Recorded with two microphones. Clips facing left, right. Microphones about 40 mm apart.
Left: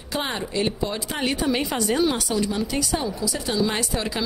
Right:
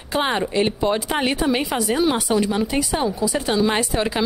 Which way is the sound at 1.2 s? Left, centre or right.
Centre.